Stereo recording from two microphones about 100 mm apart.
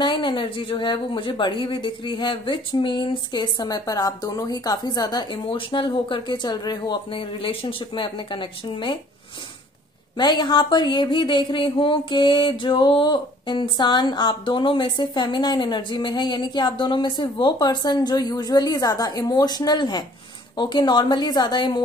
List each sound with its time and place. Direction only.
0.0 s speech: 55° left (ahead or behind)
5.5 s speech: 55° left (ahead or behind)
7.1 s speech: 60° left (ahead or behind)
10.1 s speech: 45° left (ahead or behind)